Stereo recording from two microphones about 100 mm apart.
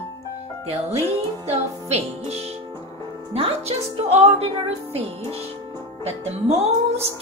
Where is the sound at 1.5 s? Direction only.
90° right.